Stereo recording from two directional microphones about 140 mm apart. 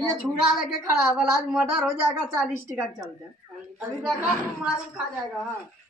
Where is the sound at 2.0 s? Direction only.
20° right (ahead or behind).